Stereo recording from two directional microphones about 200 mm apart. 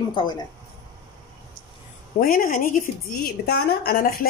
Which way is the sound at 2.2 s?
45° left (ahead or behind).